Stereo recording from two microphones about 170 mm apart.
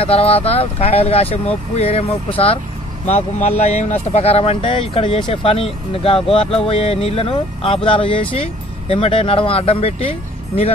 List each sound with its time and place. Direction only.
0.0 s speech: 35° left (ahead or behind)